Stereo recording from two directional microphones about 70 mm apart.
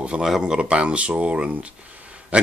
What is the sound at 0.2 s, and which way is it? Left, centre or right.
Speech, centre.